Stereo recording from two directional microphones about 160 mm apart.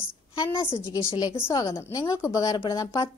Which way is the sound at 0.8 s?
25° left (ahead or behind).